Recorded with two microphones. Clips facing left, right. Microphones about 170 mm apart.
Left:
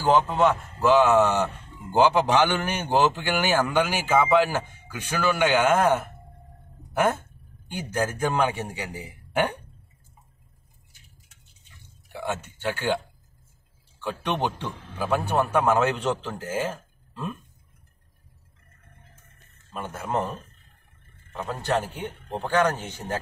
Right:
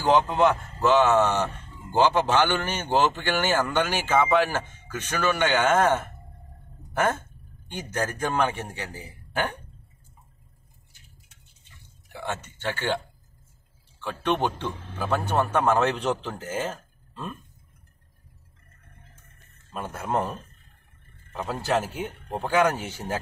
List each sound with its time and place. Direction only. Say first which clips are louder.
0.3 s a man's voice: even; 5° left (ahead or behind)
7.7 s a man's voice: left 2 dB; 10° left (ahead or behind)
12.1 s speech: left 2 dB; 10° left (ahead or behind)
14.0 s a man's voice: right 1 dB; 15° left (ahead or behind)
19.7 s speech: right 1 dB; centre (ahead or behind)
21.3 s a man's voice: even; 5° right (ahead or behind)